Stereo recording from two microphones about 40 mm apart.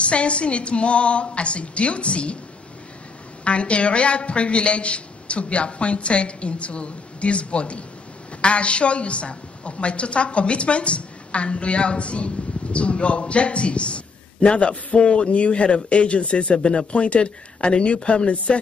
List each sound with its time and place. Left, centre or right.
0.0 s a man's voice: left
3.4 s a man's voice: left